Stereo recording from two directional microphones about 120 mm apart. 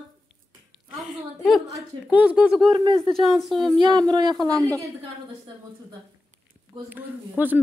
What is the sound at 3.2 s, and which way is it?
Speech, centre (ahead or behind).